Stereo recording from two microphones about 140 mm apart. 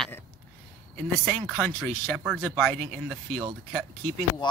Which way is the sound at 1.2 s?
5° left (ahead or behind).